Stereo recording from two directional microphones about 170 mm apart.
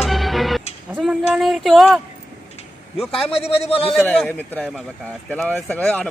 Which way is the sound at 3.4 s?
35° left (ahead or behind).